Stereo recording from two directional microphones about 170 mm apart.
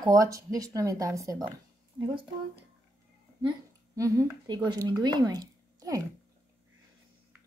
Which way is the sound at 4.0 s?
20° right (ahead or behind).